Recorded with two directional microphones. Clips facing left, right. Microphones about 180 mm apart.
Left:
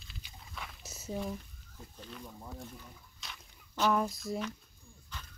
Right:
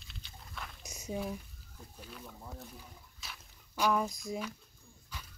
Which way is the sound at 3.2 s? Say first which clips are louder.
Even; 5° right (ahead or behind).